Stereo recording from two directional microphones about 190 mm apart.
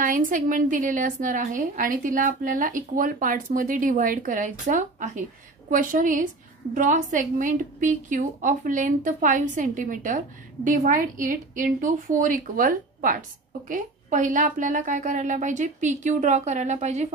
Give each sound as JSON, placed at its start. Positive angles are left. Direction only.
{"t": 0.0, "sound": "a woman's voice", "side_deg": -45}